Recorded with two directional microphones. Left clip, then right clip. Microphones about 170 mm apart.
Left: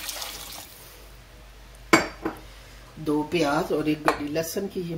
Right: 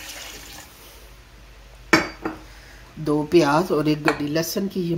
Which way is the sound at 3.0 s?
55° right (ahead or behind).